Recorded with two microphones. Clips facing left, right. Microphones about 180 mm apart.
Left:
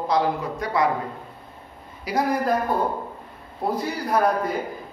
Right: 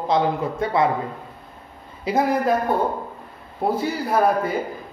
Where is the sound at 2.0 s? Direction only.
25° right (ahead or behind).